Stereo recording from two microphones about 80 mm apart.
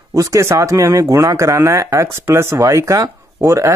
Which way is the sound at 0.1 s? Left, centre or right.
Right.